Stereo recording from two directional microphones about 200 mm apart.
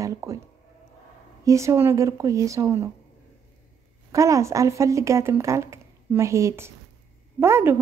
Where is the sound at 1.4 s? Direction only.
15° right (ahead or behind).